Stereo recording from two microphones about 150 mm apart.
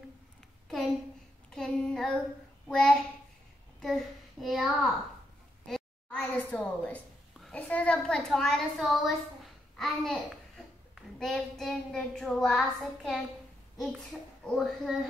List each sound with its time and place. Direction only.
1.5 s a sound: 5° left (ahead or behind)
2.7 s child singing: 5° left (ahead or behind)
3.8 s a child's voice: centre (ahead or behind)
9.8 s child singing: centre (ahead or behind)
14.4 s child singing: centre (ahead or behind)